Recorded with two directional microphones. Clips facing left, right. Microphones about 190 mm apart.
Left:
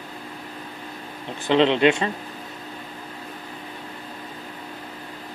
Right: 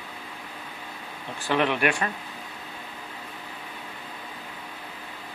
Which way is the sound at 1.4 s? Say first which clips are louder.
Left 7 dB; 20° left (ahead or behind).